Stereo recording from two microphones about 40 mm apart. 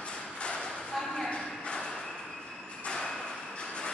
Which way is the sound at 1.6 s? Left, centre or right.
Centre.